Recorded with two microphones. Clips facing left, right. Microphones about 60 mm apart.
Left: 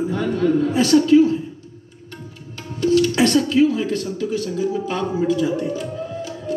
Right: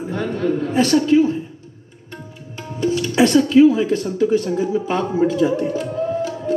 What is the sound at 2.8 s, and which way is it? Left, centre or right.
Speech, centre.